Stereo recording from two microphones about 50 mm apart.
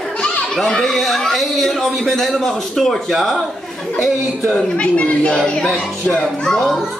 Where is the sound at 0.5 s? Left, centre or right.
Centre.